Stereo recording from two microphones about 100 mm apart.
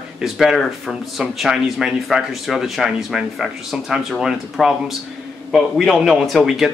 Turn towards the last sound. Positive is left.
turn(degrees=-5)  # may be behind; listen again after turning